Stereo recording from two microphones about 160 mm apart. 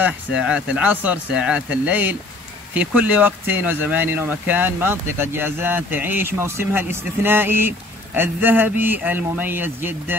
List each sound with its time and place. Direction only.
0.0 s speech: 5° right (ahead or behind)